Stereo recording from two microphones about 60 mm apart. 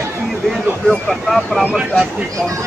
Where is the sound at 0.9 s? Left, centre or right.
Centre.